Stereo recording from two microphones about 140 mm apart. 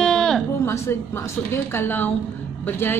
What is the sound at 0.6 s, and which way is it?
A woman's voice, 20° left (ahead or behind).